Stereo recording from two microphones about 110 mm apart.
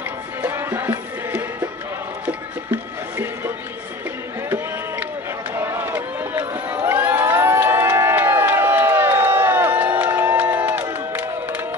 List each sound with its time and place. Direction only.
0.4 s music: 20° right (ahead or behind)
5.5 s run: 20° right (ahead or behind)